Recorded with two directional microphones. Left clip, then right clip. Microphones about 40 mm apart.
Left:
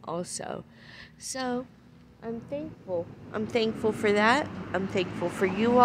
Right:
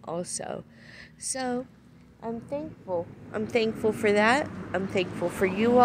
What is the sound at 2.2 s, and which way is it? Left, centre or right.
Speech, centre.